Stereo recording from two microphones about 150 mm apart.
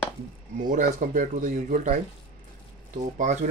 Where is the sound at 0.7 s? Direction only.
60° right (ahead or behind).